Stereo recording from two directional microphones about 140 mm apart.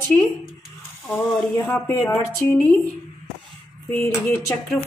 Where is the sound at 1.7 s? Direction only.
20° left (ahead or behind).